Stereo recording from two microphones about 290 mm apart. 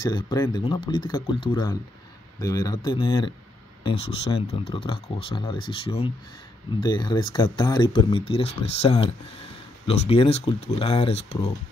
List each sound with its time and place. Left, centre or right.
0.0 s speech: centre